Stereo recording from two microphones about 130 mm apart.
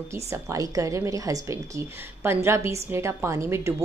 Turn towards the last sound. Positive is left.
turn(degrees=-20)  # may be behind; listen again after turning